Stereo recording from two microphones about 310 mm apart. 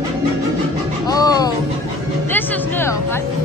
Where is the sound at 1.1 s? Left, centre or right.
Centre.